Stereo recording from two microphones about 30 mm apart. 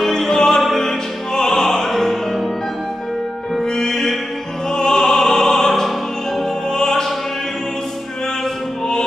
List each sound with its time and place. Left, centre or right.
0.0 s music: centre
0.6 s opera: centre
3.7 s music: centre
4.7 s opera: left